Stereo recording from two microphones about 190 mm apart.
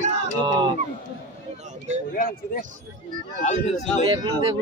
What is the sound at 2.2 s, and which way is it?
Speech, 50° left (ahead or behind).